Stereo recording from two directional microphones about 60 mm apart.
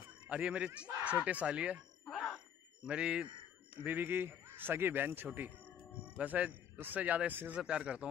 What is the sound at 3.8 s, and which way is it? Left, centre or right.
A man's voice, right.